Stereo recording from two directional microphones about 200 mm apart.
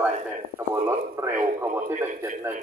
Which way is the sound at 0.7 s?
15° right (ahead or behind).